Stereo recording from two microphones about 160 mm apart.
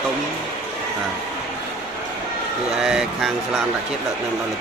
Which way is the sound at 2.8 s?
5° right (ahead or behind).